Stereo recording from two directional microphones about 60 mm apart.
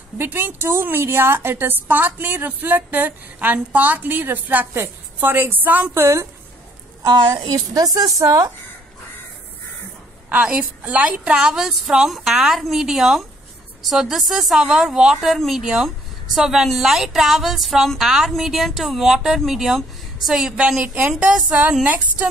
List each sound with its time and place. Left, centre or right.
0.2 s a woman's voice: right
5.9 s a woman's voice: right
7.5 s a woman's voice: right
10.3 s a woman's voice: right
20.8 s speech: right